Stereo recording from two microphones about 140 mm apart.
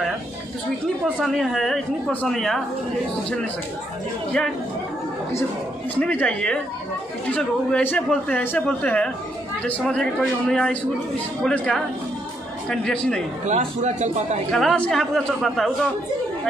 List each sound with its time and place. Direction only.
1.2 s a woman's voice: centre (ahead or behind)
5.9 s a man's voice: 10° left (ahead or behind)
13.5 s a man's voice: 55° right (ahead or behind)
14.5 s a woman's voice: centre (ahead or behind)